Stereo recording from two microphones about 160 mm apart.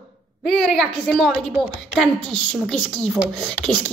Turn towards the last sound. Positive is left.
turn(degrees=5)  # may be behind; listen again after turning